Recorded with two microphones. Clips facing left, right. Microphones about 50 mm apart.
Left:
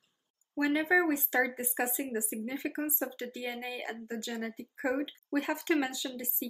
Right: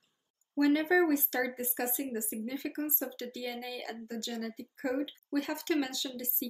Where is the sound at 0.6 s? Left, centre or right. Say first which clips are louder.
Right 1 dB; left.